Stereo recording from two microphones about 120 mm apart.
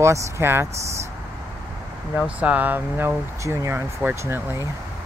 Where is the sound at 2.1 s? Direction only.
10° right (ahead or behind).